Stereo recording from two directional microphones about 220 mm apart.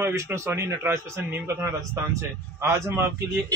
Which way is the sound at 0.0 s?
10° right (ahead or behind).